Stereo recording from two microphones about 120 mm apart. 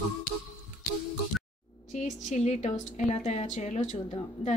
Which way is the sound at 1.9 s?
70° left (ahead or behind).